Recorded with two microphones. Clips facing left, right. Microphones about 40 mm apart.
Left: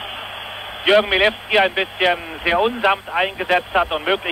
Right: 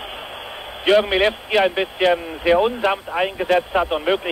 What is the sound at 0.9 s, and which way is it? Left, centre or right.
Speech, left.